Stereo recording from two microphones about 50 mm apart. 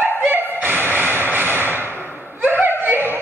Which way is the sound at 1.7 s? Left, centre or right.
Left.